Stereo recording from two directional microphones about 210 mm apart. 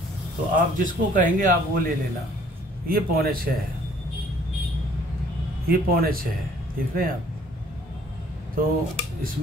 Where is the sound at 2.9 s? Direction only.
45° right (ahead or behind).